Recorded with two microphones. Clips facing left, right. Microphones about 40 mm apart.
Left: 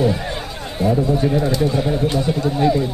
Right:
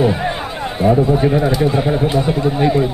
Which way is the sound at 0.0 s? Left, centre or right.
Right.